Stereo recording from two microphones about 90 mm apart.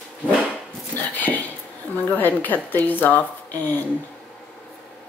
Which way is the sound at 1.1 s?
20° left (ahead or behind).